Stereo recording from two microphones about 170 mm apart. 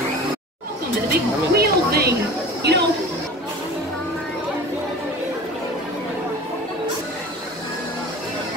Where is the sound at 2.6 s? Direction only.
80° right.